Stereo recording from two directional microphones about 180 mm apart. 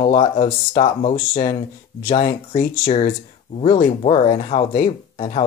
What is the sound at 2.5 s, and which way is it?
Speech, 50° left (ahead or behind).